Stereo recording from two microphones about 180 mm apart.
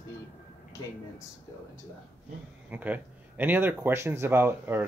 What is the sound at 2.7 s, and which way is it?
Speech, 10° right (ahead or behind).